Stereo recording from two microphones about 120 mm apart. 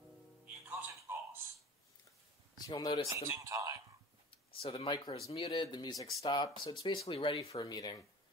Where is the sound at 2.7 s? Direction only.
40° left (ahead or behind).